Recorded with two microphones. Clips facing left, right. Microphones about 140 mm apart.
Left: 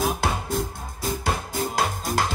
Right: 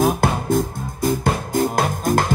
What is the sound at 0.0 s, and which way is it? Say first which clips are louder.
Music: right 7 dB; 55° right (ahead or behind).